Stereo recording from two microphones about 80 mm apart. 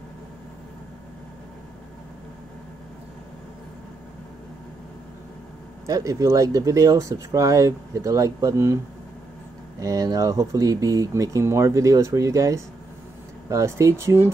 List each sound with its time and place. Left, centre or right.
5.9 s speech: right
9.8 s speech: right